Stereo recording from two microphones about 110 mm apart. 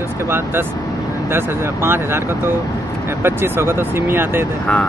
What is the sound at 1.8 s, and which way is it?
Speech, 20° right (ahead or behind).